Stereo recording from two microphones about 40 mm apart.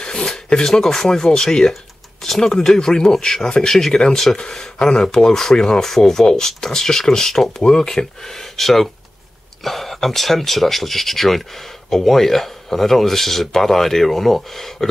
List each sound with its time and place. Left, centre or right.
0.0 s speech: centre